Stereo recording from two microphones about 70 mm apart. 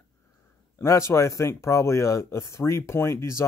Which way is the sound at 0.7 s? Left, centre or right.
Left.